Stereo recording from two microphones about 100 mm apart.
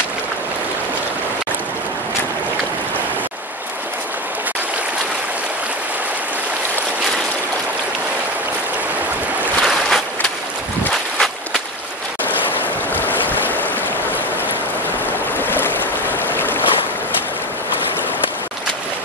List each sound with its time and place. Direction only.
9.6 s boat: centre (ahead or behind)
10.9 s walk: 5° left (ahead or behind)
12.9 s boat: 20° left (ahead or behind)
15.3 s boat: 20° left (ahead or behind)